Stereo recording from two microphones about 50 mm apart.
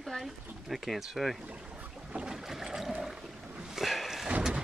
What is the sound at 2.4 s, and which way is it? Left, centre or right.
Boat, centre.